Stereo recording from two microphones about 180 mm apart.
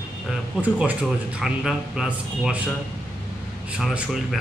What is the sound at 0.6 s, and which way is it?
A man's voice, 5° right (ahead or behind).